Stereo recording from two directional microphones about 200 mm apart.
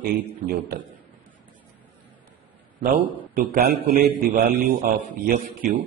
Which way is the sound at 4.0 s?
40° right (ahead or behind).